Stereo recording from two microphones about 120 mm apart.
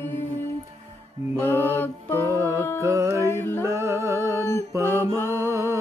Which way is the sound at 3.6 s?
25° right (ahead or behind).